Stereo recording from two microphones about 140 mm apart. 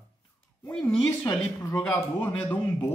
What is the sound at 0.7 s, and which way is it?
A man's voice, 5° left (ahead or behind).